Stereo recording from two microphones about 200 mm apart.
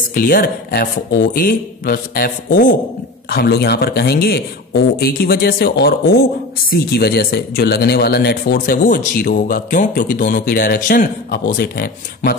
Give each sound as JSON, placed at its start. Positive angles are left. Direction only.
{"t": 0.1, "sound": "speech", "side_deg": 45}